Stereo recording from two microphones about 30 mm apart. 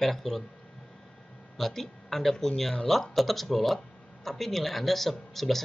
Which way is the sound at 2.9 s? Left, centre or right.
Centre.